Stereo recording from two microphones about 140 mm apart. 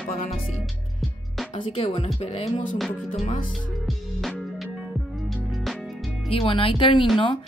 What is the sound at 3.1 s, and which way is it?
Music, 75° left (ahead or behind).